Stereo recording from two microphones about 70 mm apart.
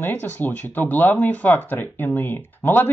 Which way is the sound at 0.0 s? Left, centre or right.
Left.